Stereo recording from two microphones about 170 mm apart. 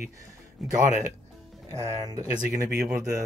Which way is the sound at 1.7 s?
15° right (ahead or behind).